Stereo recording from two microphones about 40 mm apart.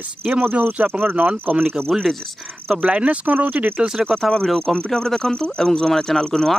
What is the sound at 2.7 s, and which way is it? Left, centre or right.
Speech, right.